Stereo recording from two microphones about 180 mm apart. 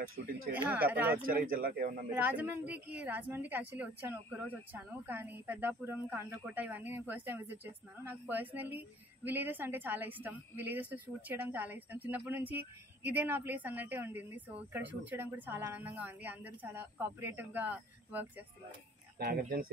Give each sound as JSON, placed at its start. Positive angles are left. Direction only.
{"t": 0.5, "sound": "a woman's voice", "side_deg": -10}
{"t": 1.2, "sound": "speech", "side_deg": -55}
{"t": 2.2, "sound": "a woman's voice", "side_deg": -10}
{"t": 19.1, "sound": "speech", "side_deg": -55}